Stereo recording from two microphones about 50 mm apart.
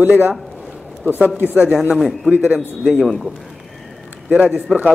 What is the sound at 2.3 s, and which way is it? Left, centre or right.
Speech, right.